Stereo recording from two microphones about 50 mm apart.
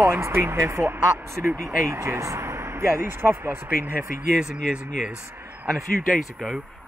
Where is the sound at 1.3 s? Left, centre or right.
Right.